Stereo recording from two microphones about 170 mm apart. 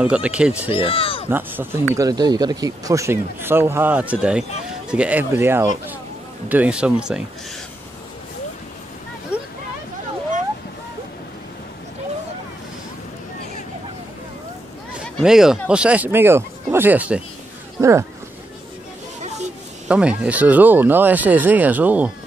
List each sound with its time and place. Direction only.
0.0 s speech: 5° right (ahead or behind)
0.7 s speech: 30° left (ahead or behind)
1.3 s speech: 15° right (ahead or behind)
15.0 s speech: 5° right (ahead or behind)
19.9 s speech: 5° right (ahead or behind)